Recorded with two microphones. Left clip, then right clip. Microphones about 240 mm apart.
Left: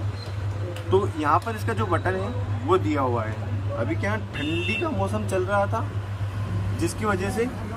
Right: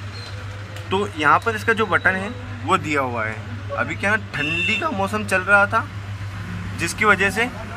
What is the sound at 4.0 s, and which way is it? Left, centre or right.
Speech, right.